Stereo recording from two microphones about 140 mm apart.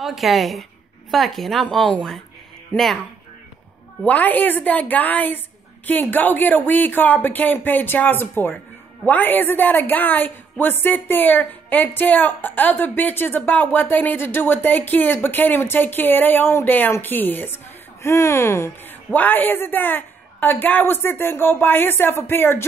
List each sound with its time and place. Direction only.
0.0 s speech: centre (ahead or behind)
4.0 s speech: 10° left (ahead or behind)